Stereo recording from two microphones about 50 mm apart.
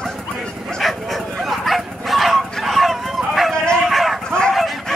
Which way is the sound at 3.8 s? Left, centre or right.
Centre.